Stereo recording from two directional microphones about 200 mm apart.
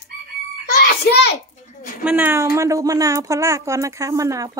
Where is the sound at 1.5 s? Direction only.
40° left (ahead or behind).